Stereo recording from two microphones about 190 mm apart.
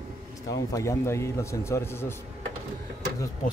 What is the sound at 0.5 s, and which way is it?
A man's voice, 15° left (ahead or behind).